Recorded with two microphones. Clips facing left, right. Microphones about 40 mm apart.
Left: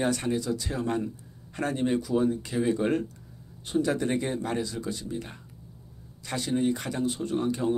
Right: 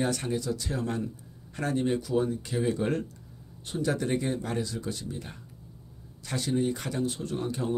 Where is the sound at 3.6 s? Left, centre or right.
Left.